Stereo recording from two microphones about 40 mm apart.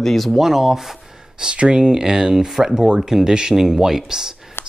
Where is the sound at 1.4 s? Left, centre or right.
Right.